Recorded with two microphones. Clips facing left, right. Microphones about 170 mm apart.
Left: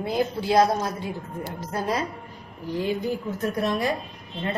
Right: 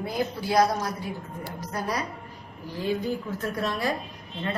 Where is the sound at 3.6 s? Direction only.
20° left (ahead or behind).